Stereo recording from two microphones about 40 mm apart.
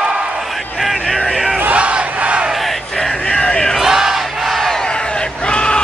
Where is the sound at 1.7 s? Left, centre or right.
Right.